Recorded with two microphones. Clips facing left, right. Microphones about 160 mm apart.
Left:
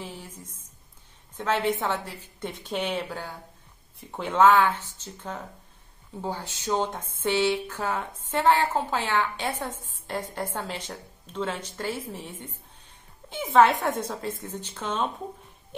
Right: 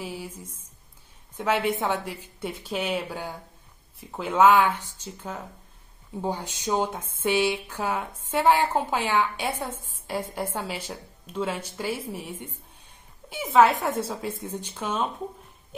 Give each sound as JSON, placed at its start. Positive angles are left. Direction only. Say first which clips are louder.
{"t": 0.0, "sound": "a woman's voice", "louder": "right 4 dB", "side_deg": -10}
{"t": 14.2, "sound": "a woman's voice", "louder": "right 1 dB", "side_deg": -10}